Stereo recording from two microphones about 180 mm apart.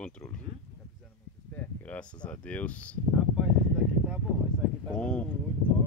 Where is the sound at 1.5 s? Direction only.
10° left (ahead or behind).